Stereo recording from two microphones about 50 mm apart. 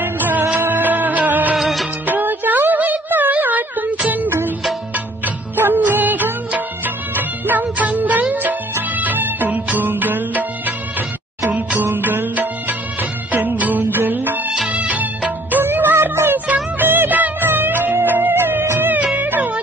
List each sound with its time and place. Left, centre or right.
0.0 s music: right
1.6 s music of bollywood: centre
2.0 s music: right
14.7 s music: right
15.6 s music: right